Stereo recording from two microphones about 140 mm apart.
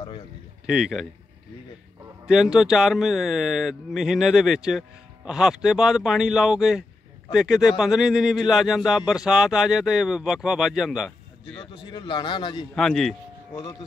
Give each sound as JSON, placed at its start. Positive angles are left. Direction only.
{"t": 0.7, "sound": "speech", "side_deg": -5}
{"t": 2.2, "sound": "speech", "side_deg": -5}
{"t": 11.6, "sound": "speech", "side_deg": 30}
{"t": 12.7, "sound": "speech", "side_deg": 5}